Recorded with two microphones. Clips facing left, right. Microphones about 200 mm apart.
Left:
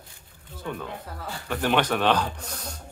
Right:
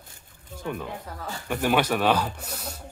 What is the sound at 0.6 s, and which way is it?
Speech, 10° right (ahead or behind).